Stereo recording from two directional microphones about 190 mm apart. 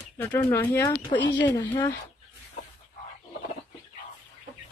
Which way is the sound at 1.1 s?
65° left (ahead or behind).